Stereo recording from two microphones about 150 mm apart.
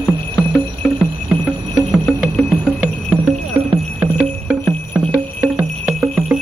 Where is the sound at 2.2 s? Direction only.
Centre (ahead or behind).